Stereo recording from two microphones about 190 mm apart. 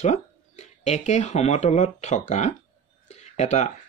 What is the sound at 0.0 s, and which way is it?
Speech, 35° left (ahead or behind).